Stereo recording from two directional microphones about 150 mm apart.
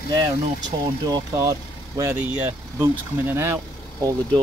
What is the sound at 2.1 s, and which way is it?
Speech, 10° right (ahead or behind).